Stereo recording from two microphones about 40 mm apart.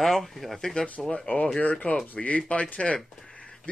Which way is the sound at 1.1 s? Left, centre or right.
Left.